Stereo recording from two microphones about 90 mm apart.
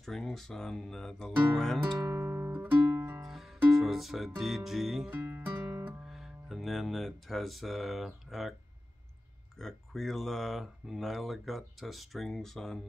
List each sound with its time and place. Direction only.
0.0 s speech: 5° left (ahead or behind)
2.0 s music: 30° right (ahead or behind)
3.3 s music: centre (ahead or behind)
3.8 s speech: centre (ahead or behind)
5.1 s music: 25° right (ahead or behind)
6.0 s speech: 5° right (ahead or behind)
9.6 s speech: 5° left (ahead or behind)